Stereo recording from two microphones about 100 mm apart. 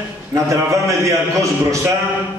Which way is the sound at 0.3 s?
30° right (ahead or behind).